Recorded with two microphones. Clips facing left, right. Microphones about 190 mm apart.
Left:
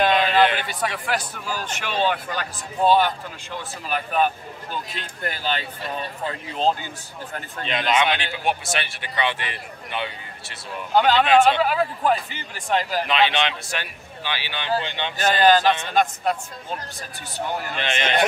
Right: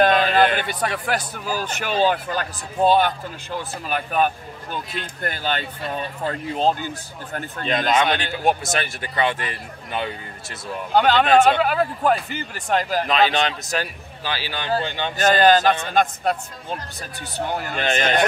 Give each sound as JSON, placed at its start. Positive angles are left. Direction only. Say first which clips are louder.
{"t": 0.0, "sound": "speech", "louder": "right 2 dB", "side_deg": -45}
{"t": 3.9, "sound": "a man's voice", "louder": "right 1 dB", "side_deg": -45}
{"t": 7.3, "sound": "a man's voice", "louder": "right 4 dB", "side_deg": -40}
{"t": 17.6, "sound": "a man's voice", "louder": "right 4 dB", "side_deg": -40}